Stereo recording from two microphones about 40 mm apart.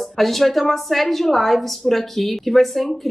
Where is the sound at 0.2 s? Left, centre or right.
Centre.